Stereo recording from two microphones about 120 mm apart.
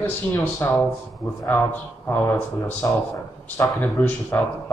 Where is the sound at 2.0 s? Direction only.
20° left (ahead or behind).